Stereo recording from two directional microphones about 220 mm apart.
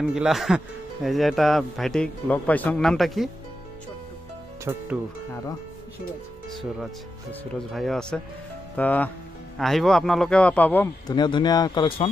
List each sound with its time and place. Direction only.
0.0 s speech: 5° right (ahead or behind)
4.7 s speech: 15° right (ahead or behind)
7.5 s speech: centre (ahead or behind)
11.1 s speech: 20° left (ahead or behind)